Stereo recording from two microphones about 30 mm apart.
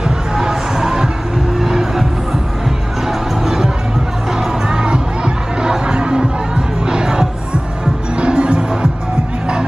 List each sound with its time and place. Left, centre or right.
0.4 s music: centre
3.1 s heart sounds: centre
4.4 s music: right
8.2 s music: right